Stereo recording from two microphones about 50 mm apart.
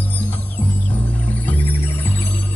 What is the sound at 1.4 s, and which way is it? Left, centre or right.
Music, left.